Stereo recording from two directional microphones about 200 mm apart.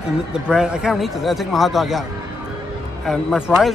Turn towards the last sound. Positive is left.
turn(degrees=0)  # may be behind; listen again after turning